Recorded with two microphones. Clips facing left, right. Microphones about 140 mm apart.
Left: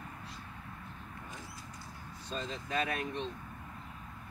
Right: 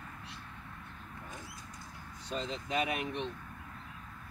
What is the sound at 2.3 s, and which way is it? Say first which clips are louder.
Speech: right 2 dB; 15° right (ahead or behind).